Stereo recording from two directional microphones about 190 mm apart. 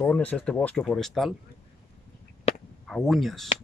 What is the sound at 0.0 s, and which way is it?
Speech, 10° left (ahead or behind).